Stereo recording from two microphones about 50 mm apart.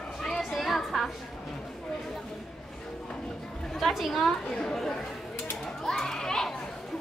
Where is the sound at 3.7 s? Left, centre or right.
Centre.